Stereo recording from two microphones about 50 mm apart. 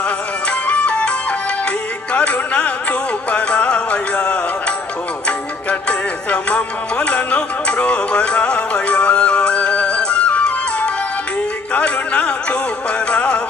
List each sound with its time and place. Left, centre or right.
0.5 s music: left
2.1 s music: left
5.7 s music: left